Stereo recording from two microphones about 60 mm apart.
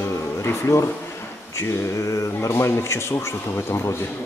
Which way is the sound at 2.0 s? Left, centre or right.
Left.